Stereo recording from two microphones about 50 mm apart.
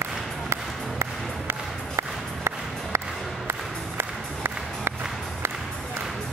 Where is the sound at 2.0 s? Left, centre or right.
Right.